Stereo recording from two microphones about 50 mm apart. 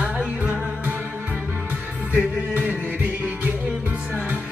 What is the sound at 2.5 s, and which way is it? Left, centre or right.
Music, right.